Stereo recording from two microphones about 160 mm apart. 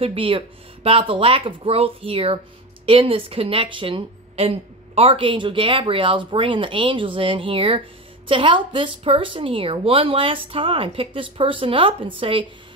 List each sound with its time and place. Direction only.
0.0 s speech: 35° right (ahead or behind)